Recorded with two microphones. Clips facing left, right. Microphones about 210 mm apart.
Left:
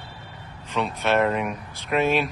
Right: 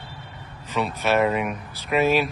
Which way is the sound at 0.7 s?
5° right (ahead or behind).